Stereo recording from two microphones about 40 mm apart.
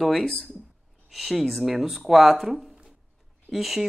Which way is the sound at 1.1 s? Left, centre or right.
Centre.